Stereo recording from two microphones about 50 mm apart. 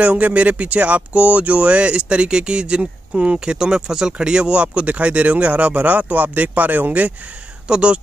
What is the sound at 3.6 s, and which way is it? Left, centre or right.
Speech, centre.